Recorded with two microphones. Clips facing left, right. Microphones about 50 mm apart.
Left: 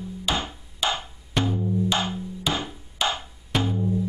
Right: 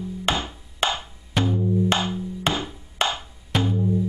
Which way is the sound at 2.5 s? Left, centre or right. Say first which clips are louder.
Right 2 dB; right.